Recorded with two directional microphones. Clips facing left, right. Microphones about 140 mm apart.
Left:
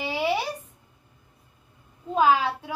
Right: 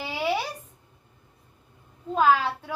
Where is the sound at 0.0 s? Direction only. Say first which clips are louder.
Left 2 dB; centre (ahead or behind).